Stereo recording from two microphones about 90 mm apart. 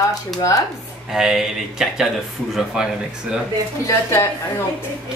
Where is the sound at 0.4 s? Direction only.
40° left (ahead or behind).